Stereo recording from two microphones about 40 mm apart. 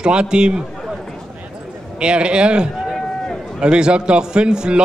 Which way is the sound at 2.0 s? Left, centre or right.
Right.